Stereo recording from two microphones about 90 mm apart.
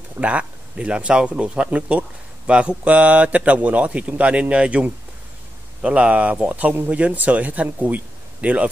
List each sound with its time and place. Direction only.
0.2 s speech: 15° right (ahead or behind)